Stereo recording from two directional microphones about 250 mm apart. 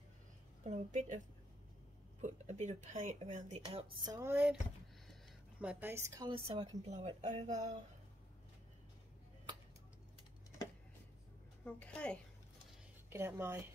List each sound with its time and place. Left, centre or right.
0.7 s speech: right
2.2 s speech: right; by 4.6 s centre
5.6 s speech: centre; by 7.7 s right
11.6 s a woman's voice: centre
13.1 s speech: centre